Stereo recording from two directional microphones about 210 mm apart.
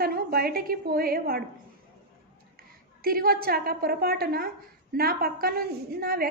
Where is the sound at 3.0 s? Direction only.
45° right (ahead or behind).